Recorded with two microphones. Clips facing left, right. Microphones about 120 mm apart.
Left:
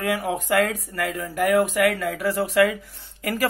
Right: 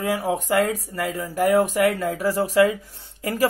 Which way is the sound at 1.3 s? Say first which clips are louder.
Right 1 dB; 40° right (ahead or behind).